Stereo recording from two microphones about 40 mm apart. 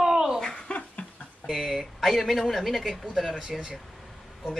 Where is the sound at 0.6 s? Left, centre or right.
Left.